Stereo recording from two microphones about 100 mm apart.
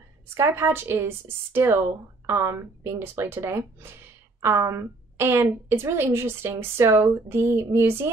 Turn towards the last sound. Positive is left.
turn(degrees=-25)  # may be behind; listen again after turning